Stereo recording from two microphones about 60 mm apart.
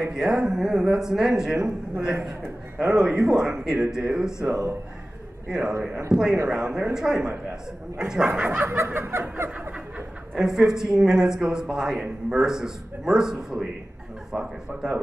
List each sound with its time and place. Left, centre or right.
0.0 s speech: centre
8.4 s snicker: right
8.8 s snicker: right
10.3 s speech: centre